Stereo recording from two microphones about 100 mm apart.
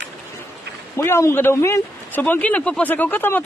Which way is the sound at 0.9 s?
25° left (ahead or behind).